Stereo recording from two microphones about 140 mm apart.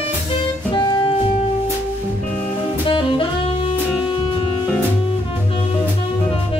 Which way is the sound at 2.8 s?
35° left (ahead or behind).